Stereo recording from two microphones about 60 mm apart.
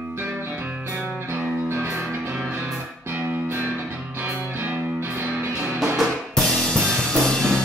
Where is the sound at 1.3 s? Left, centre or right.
Right.